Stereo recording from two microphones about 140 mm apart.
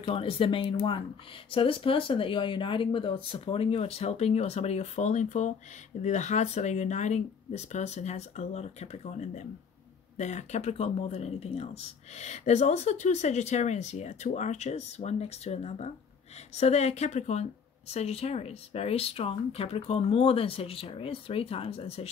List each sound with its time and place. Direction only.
0.0 s speech: 40° left (ahead or behind)